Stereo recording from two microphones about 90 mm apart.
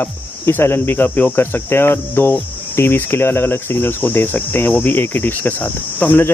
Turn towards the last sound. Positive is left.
turn(degrees=20)  # may be behind; listen again after turning